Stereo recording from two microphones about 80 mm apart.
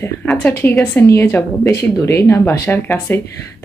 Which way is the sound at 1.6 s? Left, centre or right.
Left.